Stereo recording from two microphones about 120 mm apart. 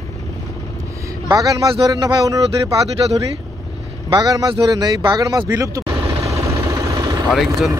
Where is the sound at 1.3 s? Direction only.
30° right (ahead or behind).